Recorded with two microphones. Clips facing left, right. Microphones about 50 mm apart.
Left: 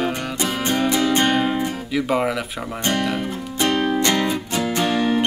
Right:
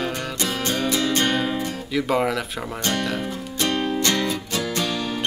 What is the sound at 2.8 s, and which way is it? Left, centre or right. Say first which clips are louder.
Music: left 3 dB; centre.